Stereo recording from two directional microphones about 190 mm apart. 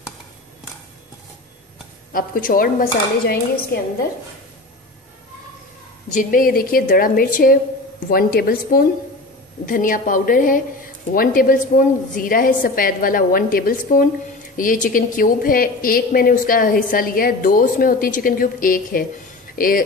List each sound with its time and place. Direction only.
2.1 s a woman's voice: 50° left (ahead or behind)
6.1 s a woman's voice: 50° left (ahead or behind)